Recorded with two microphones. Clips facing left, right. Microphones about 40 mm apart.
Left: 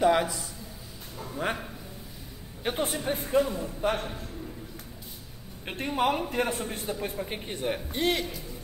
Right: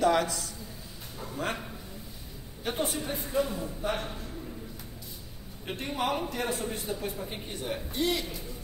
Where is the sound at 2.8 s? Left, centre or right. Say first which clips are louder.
Left 2 dB; left.